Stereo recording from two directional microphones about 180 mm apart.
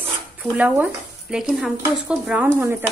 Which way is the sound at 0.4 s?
5° right (ahead or behind).